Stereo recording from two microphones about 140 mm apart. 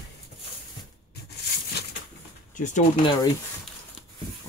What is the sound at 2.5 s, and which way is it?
Speech, 60° left (ahead or behind).